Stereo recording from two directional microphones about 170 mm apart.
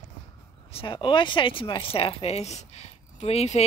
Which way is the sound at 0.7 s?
30° left (ahead or behind).